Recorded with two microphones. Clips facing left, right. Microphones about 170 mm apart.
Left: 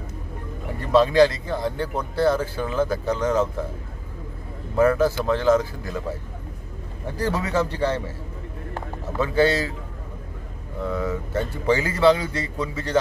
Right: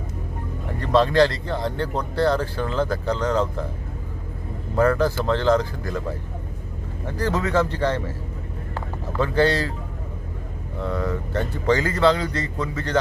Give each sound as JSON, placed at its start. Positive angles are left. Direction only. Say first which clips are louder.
{"t": 0.7, "sound": "speech", "louder": "left 1 dB", "side_deg": 10}
{"t": 4.7, "sound": "speech", "louder": "left 1 dB", "side_deg": 10}
{"t": 7.2, "sound": "speech", "louder": "right 2 dB", "side_deg": 10}
{"t": 9.2, "sound": "speech", "louder": "even", "side_deg": 10}
{"t": 10.9, "sound": "speech", "louder": "even", "side_deg": 5}